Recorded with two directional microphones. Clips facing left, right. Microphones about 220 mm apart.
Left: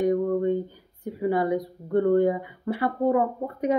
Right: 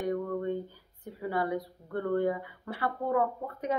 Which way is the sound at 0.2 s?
20° left (ahead or behind).